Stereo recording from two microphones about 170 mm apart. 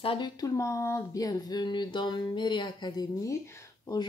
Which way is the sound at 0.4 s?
20° left (ahead or behind).